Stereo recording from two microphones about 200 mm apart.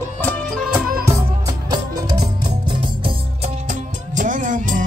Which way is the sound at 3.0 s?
35° right (ahead or behind).